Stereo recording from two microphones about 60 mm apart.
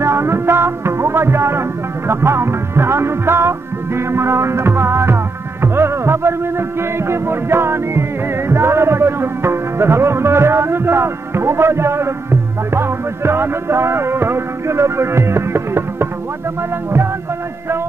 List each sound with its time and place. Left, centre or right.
0.0 s music: right